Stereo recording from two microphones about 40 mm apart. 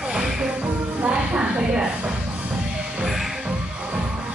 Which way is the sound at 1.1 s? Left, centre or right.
Right.